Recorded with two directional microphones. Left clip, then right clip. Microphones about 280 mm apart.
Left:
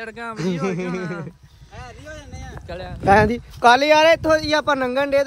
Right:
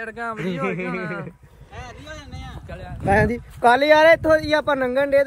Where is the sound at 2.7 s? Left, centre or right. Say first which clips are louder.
Left 5 dB; left.